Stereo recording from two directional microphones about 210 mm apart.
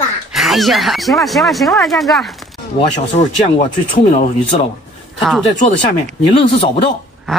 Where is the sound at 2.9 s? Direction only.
30° left (ahead or behind).